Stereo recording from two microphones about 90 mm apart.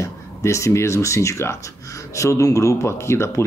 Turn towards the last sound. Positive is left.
turn(degrees=30)  # may be behind; listen again after turning